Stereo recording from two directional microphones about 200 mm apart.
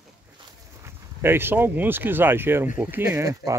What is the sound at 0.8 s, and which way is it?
Speech, 10° right (ahead or behind).